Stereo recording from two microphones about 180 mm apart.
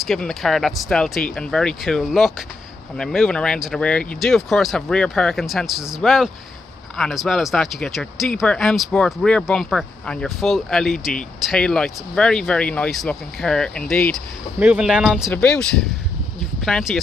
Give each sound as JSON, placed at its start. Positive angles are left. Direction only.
{"t": 0.0, "sound": "speech", "side_deg": 0}
{"t": 14.6, "sound": "speech", "side_deg": -5}